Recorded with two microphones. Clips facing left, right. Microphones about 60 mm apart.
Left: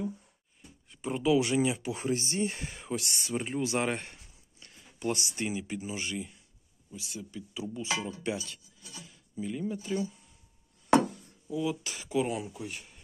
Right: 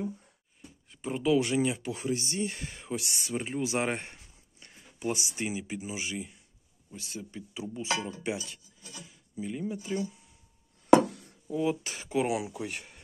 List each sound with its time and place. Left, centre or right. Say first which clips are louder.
0.8 s speech: even; centre
2.0 s speech: left 1 dB; left
2.7 s speech: left 1 dB; centre
3.9 s a sound: even; right
4.9 s speech: even; centre
6.9 s speech: right 1 dB; right
7.7 s speech: right 2 dB; right
8.4 s speech: even; right
9.4 s speech: even; centre
11.1 s chop: right 1 dB; right
11.7 s speech: right 1 dB; right
12.2 s speech: right 2 dB; right